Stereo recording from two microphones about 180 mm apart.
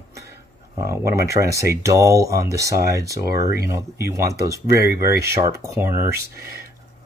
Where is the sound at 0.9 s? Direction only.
15° right (ahead or behind).